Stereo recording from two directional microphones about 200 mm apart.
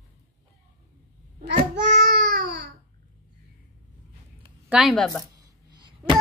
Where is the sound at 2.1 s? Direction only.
55° right (ahead or behind).